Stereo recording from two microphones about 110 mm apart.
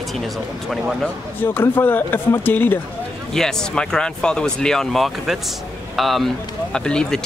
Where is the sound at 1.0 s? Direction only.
15° left (ahead or behind).